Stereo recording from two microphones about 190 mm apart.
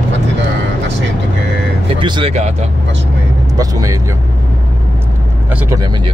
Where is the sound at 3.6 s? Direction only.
20° right (ahead or behind).